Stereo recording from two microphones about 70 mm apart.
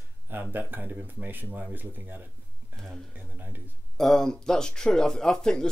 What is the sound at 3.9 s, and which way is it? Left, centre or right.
Speech, centre.